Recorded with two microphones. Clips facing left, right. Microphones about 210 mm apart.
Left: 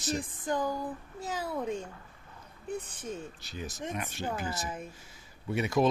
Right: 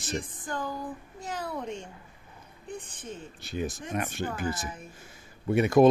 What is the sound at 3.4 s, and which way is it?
Speech, 55° right (ahead or behind).